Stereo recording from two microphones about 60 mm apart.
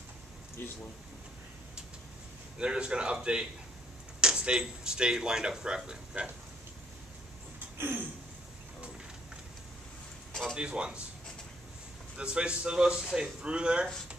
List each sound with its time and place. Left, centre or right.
0.6 s speech: left
2.6 s a man's voice: centre
7.7 s a sound: right
10.6 s a man's voice: centre
12.2 s a man's voice: centre